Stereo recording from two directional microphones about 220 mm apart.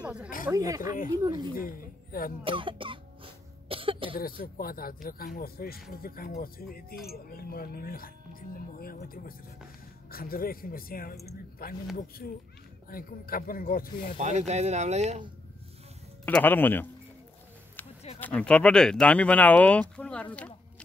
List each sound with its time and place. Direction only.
0.0 s snake: 5° right (ahead or behind)
0.5 s speech: 15° right (ahead or behind)
1.6 s speech: 40° left (ahead or behind)
2.4 s cough: 25° right (ahead or behind)
4.2 s speech: 40° left (ahead or behind)
12.9 s speech: 40° left (ahead or behind)
14.1 s speech: 30° right (ahead or behind)
16.3 s speech: 5° left (ahead or behind)
18.2 s speech: 5° left (ahead or behind)